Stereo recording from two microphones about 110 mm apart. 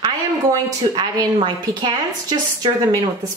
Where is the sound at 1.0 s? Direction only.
40° right (ahead or behind).